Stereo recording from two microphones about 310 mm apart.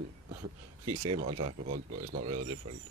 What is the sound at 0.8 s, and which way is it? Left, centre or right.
Speech, right.